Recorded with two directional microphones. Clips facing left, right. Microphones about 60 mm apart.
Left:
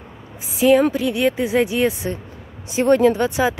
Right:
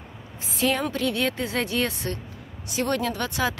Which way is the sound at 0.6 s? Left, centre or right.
Centre.